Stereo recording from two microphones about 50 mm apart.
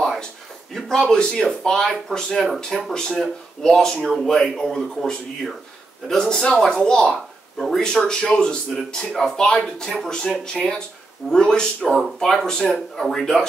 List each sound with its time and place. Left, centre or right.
0.7 s speech: centre
7.5 s speech: centre
7.8 s speech: centre